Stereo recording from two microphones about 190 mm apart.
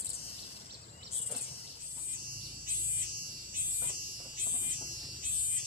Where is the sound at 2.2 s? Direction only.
50° right (ahead or behind).